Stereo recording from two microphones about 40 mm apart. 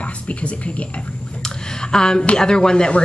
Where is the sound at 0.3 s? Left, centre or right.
Left.